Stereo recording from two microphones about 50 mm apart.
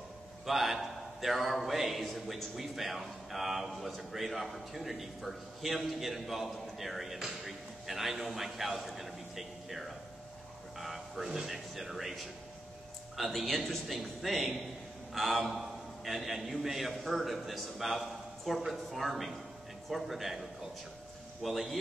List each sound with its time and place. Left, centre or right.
0.5 s a man's voice: centre